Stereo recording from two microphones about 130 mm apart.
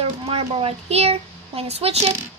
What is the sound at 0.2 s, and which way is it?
A child's voice, 50° right (ahead or behind).